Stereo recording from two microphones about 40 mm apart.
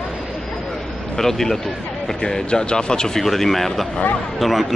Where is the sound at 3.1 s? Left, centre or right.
Centre.